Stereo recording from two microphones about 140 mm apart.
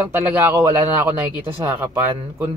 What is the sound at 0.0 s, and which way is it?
Speech, 10° right (ahead or behind).